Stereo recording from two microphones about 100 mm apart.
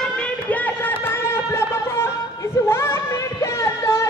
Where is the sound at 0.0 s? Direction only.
10° left (ahead or behind).